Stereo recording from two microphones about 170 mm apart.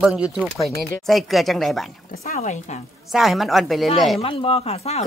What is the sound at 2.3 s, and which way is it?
Speech, 45° left (ahead or behind).